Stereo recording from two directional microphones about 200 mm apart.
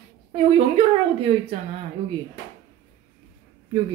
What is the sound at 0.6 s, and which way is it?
Speech, 25° right (ahead or behind).